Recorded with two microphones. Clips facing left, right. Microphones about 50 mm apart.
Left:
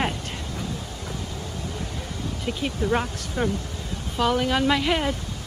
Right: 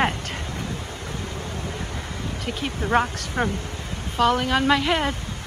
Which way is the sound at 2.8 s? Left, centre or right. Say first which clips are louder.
Right 4 dB; right.